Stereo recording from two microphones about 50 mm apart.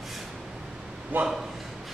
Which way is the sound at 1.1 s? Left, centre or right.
Right.